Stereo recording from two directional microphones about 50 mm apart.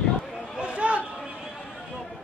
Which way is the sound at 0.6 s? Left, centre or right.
Right.